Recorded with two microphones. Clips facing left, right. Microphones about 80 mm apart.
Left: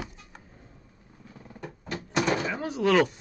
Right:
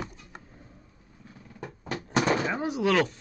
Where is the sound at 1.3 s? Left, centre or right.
Left.